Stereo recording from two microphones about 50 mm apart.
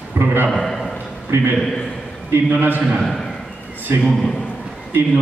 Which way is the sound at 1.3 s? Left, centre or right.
Right.